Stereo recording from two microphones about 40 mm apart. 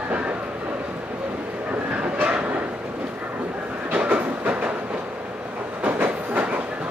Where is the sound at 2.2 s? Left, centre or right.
Right.